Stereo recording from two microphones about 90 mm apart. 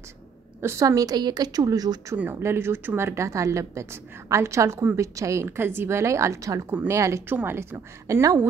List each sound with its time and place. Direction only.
0.6 s a woman's voice: 30° right (ahead or behind)
0.8 s a woman's voice: 45° right (ahead or behind)
2.4 s speech: 30° right (ahead or behind)